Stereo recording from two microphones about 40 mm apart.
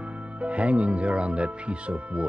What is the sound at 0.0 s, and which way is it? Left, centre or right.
Speech, right.